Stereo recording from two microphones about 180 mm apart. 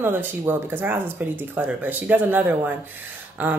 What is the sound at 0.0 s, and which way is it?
A woman's voice, 10° right (ahead or behind).